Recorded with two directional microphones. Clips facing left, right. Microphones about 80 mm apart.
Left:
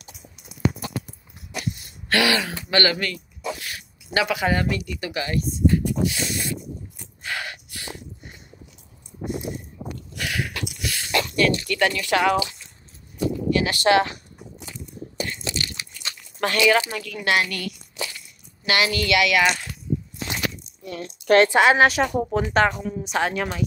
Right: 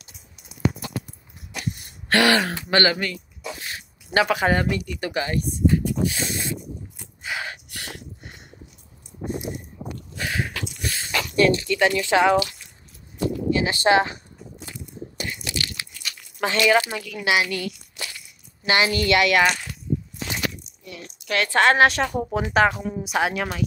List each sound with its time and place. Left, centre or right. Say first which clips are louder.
1.9 s speech: right 3 dB; right
2.8 s speech: left 1 dB; right
6.0 s a sound: even; right
7.3 s a sound: even; centre
7.7 s dog: even; right
10.1 s a sound: right 1 dB; right
10.8 s speech: left 3 dB; right
13.5 s speech: even; right
15.4 s biting: even; left
16.3 s a woman's voice: even; centre; by 19.4 s right
20.8 s a sound: left 9 dB; left
21.5 s a woman's voice: left 1 dB; centre